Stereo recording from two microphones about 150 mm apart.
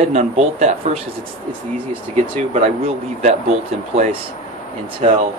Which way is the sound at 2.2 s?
40° right (ahead or behind).